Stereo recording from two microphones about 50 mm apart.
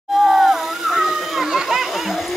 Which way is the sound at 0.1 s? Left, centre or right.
Centre.